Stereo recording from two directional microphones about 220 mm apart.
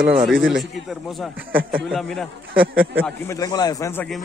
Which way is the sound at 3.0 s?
10° left (ahead or behind).